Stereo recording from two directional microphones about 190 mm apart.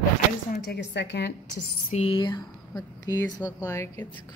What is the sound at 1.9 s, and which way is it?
Speech, 25° left (ahead or behind).